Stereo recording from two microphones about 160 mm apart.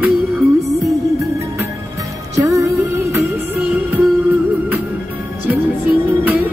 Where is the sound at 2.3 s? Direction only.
20° right (ahead or behind).